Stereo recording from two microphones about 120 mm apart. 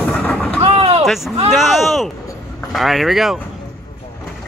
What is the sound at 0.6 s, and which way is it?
Speech, 55° right (ahead or behind).